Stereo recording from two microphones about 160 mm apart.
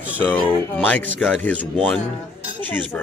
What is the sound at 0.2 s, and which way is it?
Speech, 10° left (ahead or behind).